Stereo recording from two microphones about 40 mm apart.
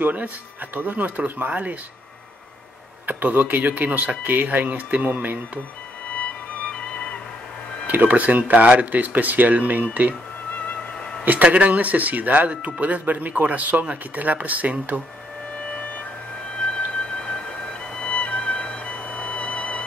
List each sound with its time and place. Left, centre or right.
0.0 s speech: right
3.1 s speech: right
6.1 s music: left
7.8 s speech: right
11.4 s speech: right
16.5 s music: left
18.0 s music: left